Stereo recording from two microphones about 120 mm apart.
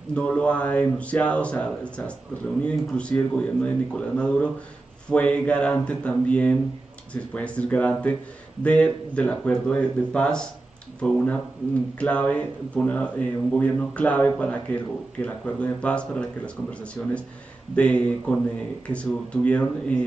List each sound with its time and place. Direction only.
0.1 s a man's voice: 10° left (ahead or behind)